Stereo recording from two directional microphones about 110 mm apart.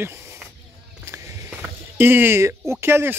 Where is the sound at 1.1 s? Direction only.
25° right (ahead or behind).